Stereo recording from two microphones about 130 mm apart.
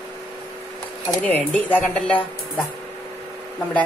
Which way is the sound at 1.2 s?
10° left (ahead or behind).